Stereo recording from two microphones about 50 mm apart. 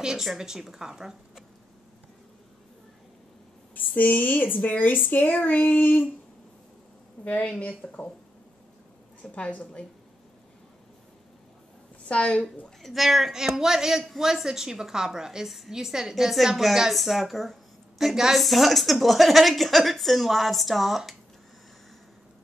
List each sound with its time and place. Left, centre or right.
0.0 s a woman's voice: centre
3.7 s speech: left
4.6 s child singing: left
7.4 s a woman's voice: left
9.2 s a woman's voice: left
12.1 s a woman's voice: left
12.8 s a woman's voice: centre